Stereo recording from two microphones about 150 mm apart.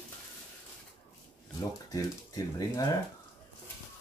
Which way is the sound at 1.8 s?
25° left (ahead or behind).